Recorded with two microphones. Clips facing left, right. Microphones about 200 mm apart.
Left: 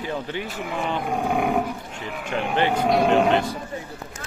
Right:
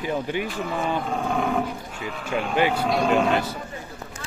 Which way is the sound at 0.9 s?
15° left (ahead or behind).